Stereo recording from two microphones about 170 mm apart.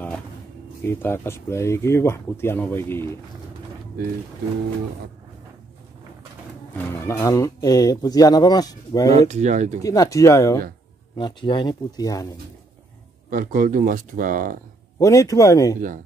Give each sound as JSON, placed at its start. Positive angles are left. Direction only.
{"t": 0.8, "sound": "speech", "side_deg": 15}
{"t": 6.7, "sound": "speech", "side_deg": 10}
{"t": 9.3, "sound": "speech", "side_deg": -45}
{"t": 9.8, "sound": "speech", "side_deg": 20}
{"t": 13.3, "sound": "speech", "side_deg": -55}
{"t": 15.0, "sound": "speech", "side_deg": 20}